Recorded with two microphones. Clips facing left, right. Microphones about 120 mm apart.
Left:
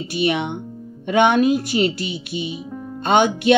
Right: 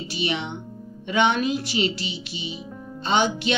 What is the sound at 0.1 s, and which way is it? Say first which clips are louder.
Speech: left 7 dB; 55° left (ahead or behind).